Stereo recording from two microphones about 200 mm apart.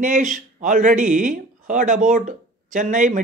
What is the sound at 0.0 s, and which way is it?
Speech, 40° right (ahead or behind).